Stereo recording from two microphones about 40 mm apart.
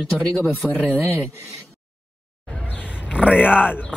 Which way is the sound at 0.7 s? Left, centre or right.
Left.